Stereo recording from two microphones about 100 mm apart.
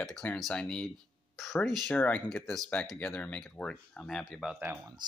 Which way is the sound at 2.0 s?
15° left (ahead or behind).